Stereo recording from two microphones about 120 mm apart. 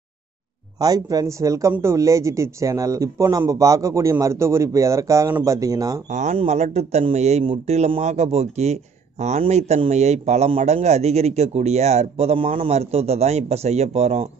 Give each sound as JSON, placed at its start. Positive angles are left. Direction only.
{"t": 0.7, "sound": "speech", "side_deg": -30}
{"t": 6.0, "sound": "speech", "side_deg": -90}
{"t": 6.3, "sound": "a man's voice", "side_deg": -65}